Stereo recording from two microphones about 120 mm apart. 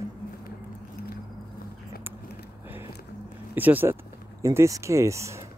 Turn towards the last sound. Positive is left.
turn(degrees=-25)  # may be behind; listen again after turning